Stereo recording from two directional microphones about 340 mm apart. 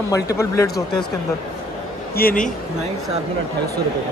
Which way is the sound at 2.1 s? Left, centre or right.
Left.